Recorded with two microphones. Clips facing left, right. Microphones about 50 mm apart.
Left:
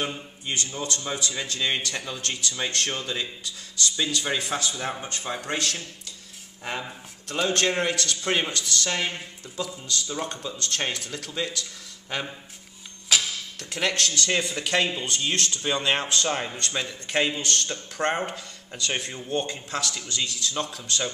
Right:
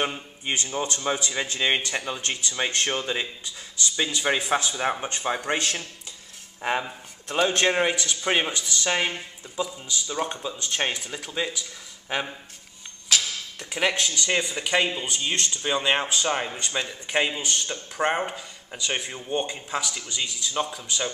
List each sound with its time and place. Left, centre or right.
0.0 s a man's voice: right
13.1 s music: centre
13.6 s speech: centre